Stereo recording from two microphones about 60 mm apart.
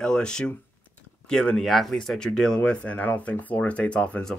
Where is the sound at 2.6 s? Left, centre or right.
Left.